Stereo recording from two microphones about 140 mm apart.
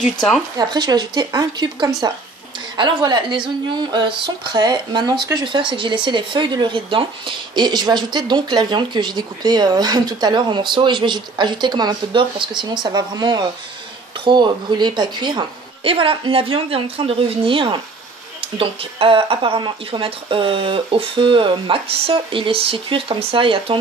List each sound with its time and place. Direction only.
0.6 s a woman's voice: 30° right (ahead or behind)